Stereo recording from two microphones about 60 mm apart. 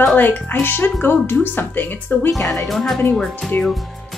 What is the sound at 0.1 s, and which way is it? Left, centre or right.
A woman's voice, left.